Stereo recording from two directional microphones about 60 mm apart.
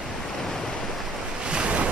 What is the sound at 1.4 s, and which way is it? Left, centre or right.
Waves, centre.